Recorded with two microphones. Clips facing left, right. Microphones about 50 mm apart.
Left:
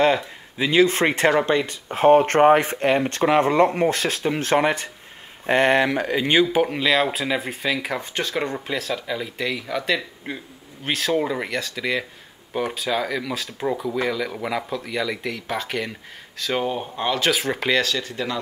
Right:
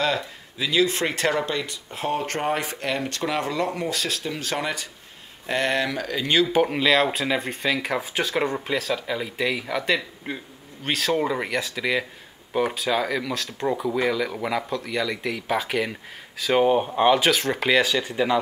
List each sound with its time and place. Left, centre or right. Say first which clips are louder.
0.0 s speech: left 6 dB; left
6.4 s speech: even; centre
16.6 s speech: right 6 dB; centre
17.3 s speech: even; centre
17.8 s speech: right 3 dB; centre